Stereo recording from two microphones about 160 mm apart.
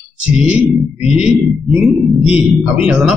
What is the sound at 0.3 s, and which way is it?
Speech, 5° right (ahead or behind).